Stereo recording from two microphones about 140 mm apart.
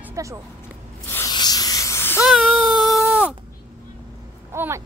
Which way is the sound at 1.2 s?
30° left (ahead or behind).